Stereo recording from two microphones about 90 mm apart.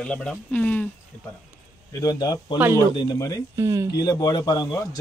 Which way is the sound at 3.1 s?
40° left (ahead or behind).